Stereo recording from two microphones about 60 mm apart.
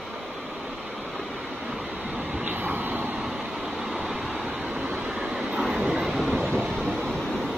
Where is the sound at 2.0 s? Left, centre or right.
Right.